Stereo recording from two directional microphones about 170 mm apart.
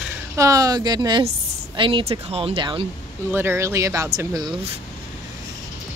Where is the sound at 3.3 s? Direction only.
15° right (ahead or behind).